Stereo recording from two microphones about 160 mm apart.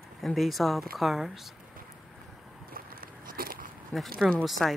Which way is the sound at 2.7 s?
65° right (ahead or behind).